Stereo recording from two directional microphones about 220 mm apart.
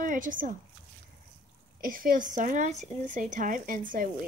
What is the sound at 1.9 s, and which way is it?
A woman's voice, 40° right (ahead or behind).